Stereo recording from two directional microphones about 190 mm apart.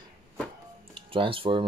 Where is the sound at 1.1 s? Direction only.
30° right (ahead or behind).